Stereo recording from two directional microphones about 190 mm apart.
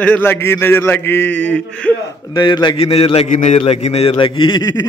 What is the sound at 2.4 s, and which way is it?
A man's voice, 25° left (ahead or behind).